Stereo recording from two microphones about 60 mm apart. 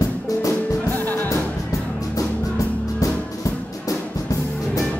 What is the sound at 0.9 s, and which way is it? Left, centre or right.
Music, left.